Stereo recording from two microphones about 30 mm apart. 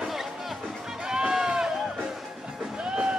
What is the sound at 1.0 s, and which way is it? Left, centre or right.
Music, right.